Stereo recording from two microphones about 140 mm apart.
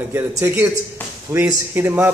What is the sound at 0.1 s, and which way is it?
A man's voice, 15° right (ahead or behind).